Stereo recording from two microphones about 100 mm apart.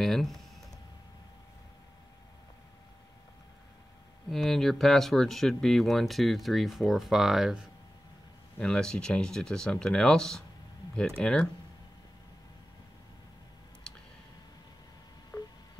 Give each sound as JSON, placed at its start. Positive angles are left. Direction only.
{"t": 0.0, "sound": "speech", "side_deg": 5}
{"t": 4.3, "sound": "speech", "side_deg": 5}
{"t": 8.5, "sound": "speech", "side_deg": 10}
{"t": 13.9, "sound": "a sound", "side_deg": 10}
{"t": 15.3, "sound": "telephone dialing", "side_deg": 20}